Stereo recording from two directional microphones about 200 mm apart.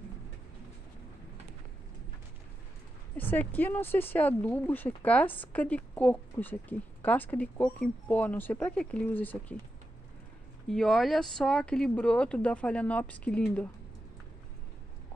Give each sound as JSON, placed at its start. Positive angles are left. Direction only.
{"t": 3.2, "sound": "speech", "side_deg": 10}
{"t": 10.7, "sound": "speech", "side_deg": 0}